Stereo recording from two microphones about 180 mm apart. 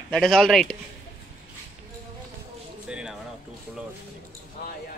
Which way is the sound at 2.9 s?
5° right (ahead or behind).